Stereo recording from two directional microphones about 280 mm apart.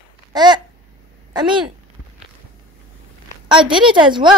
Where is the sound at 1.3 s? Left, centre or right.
Centre.